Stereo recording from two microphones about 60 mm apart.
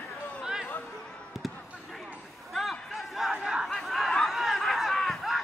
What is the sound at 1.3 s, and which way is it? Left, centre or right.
Basketball bounce, centre.